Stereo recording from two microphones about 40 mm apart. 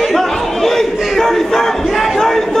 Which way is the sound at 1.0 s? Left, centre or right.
Centre.